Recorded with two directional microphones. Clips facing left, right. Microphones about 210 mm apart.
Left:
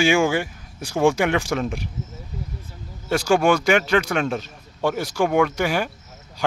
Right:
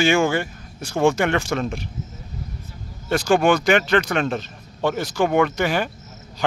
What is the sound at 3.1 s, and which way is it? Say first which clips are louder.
Speech: right 1 dB; 10° left (ahead or behind).